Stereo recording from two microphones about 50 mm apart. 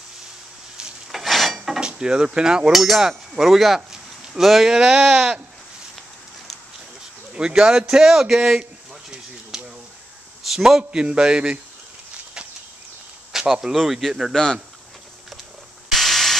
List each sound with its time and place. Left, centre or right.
1.1 s dishes: centre
1.8 s livestock: centre
2.7 s speech: centre
4.7 s a man's voice: centre
7.3 s a man's voice: centre
9.5 s a sound: centre
10.4 s a man's voice: centre
10.8 s a sound: centre
13.3 s a man's voice: centre
14.3 s speech: centre
15.9 s a sound: centre